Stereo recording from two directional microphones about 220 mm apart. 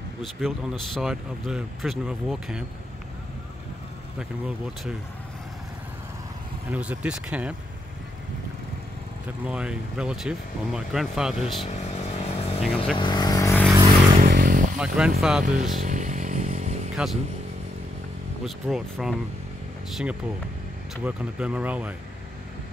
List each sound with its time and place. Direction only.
0.2 s speech: centre (ahead or behind)
4.2 s speech: 5° right (ahead or behind)
6.7 s speech: 5° right (ahead or behind)
9.4 s speech: 5° right (ahead or behind)
11.7 s vehicle: 30° left (ahead or behind); by 13.7 s 15° left (ahead or behind)
14.1 s music: 40° right (ahead or behind)
14.8 s speech: 5° right (ahead or behind)
15.4 s speech: 35° right (ahead or behind)
15.8 s motorcycle: 35° right (ahead or behind)
16.9 s speech: centre (ahead or behind)
18.4 s speech: centre (ahead or behind)